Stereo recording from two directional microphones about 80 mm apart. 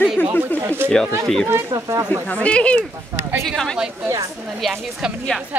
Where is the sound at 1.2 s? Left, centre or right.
Centre.